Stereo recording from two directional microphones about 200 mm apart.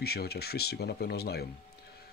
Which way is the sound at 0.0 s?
50° left (ahead or behind).